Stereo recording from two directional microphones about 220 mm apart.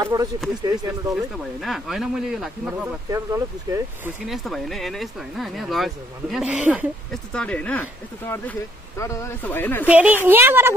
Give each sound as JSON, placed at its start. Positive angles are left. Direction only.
{"t": 0.0, "sound": "speech", "side_deg": -15}
{"t": 1.1, "sound": "speech", "side_deg": 0}
{"t": 3.1, "sound": "speech", "side_deg": -15}
{"t": 4.3, "sound": "speech", "side_deg": 0}
{"t": 7.3, "sound": "speech", "side_deg": 5}
{"t": 9.8, "sound": "speech", "side_deg": -5}